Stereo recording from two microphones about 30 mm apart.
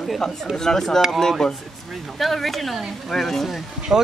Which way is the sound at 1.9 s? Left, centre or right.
Centre.